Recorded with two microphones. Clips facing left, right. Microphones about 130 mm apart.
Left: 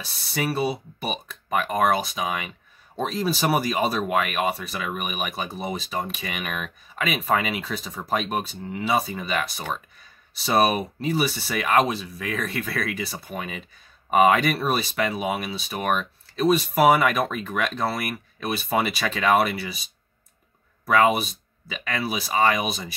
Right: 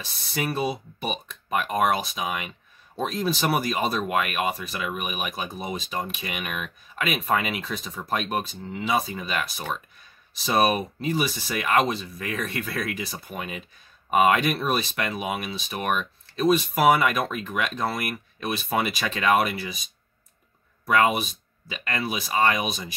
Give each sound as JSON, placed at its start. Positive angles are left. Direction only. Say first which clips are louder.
{"t": 0.0, "sound": "speech", "louder": "left 2 dB", "side_deg": 0}
{"t": 20.8, "sound": "speech", "louder": "left 2 dB", "side_deg": 0}